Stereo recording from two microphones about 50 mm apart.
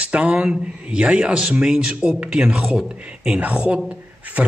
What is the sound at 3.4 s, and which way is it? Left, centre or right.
Speech, right.